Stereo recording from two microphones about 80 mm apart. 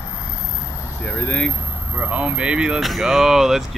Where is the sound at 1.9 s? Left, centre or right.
Centre.